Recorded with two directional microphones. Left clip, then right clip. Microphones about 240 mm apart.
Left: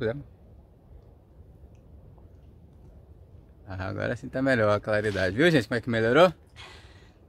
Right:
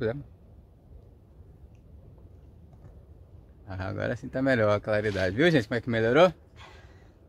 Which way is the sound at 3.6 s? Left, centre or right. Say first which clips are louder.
Left 1 dB; centre.